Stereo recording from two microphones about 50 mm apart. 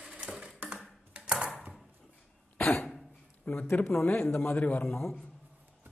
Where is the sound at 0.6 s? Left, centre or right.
Right.